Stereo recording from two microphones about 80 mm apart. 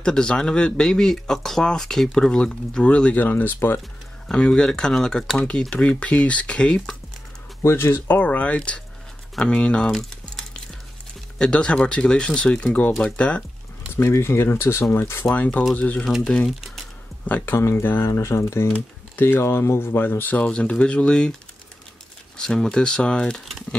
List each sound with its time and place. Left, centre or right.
0.0 s speech: centre
4.3 s speech: centre
7.6 s speech: left; by 8.8 s centre
9.3 s a sound: centre
11.3 s speech: centre
13.9 s speech: left
15.2 s speech: centre
16.4 s speech: centre
17.3 s speech: left
18.7 s speech: left
22.4 s speech: centre